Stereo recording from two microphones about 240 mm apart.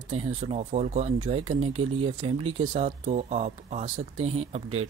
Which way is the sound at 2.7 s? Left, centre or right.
Right.